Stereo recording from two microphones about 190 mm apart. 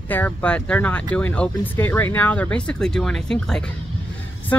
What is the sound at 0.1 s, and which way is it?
Speech, 10° left (ahead or behind).